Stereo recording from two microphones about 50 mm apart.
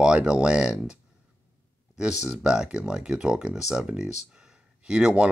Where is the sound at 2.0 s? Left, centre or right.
Centre.